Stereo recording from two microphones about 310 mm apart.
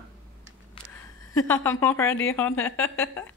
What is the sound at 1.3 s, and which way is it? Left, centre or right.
A woman's voice, centre.